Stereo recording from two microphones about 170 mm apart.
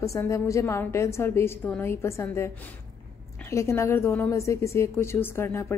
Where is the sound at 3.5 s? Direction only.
15° left (ahead or behind).